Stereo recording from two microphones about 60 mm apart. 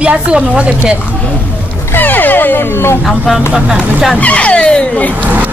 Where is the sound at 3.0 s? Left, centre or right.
Centre.